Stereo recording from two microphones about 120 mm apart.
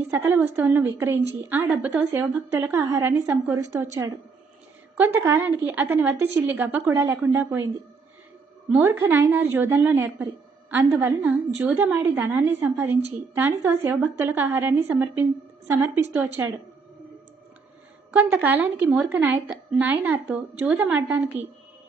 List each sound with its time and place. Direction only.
0.1 s a woman's voice: 25° right (ahead or behind)
8.8 s a woman's voice: 20° right (ahead or behind)
18.1 s a woman's voice: 15° right (ahead or behind)